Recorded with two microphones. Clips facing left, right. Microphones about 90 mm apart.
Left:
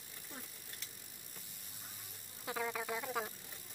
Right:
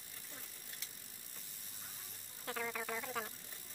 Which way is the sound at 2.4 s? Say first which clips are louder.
Left 2 dB; 10° left (ahead or behind).